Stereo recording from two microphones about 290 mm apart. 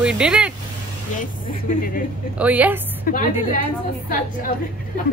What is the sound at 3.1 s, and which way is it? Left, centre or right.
Speech, left.